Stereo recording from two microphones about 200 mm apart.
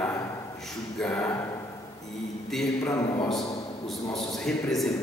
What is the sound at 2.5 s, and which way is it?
Speech, centre (ahead or behind).